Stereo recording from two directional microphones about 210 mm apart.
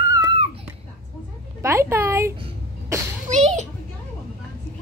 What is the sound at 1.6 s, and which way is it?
Speech, 10° right (ahead or behind).